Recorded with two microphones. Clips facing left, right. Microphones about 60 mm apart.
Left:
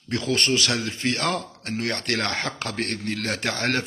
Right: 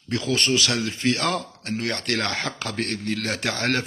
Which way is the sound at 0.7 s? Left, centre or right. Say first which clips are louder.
Right 2 dB; left.